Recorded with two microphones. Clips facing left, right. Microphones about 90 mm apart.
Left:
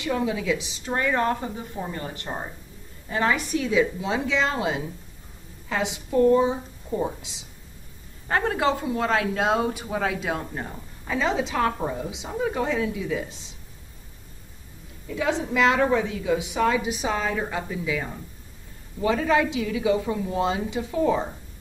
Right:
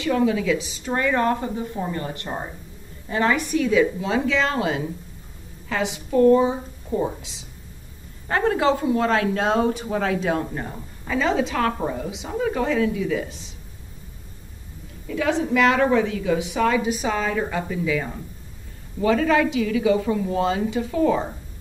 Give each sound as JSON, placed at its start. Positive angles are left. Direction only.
{"t": 0.0, "sound": "a woman's voice", "side_deg": 15}
{"t": 2.2, "sound": "speech", "side_deg": 0}
{"t": 3.1, "sound": "a woman's voice", "side_deg": 10}
{"t": 6.4, "sound": "speech", "side_deg": -5}
{"t": 8.3, "sound": "a woman's voice", "side_deg": 5}
{"t": 15.0, "sound": "a woman's voice", "side_deg": 20}
{"t": 19.0, "sound": "a woman's voice", "side_deg": 15}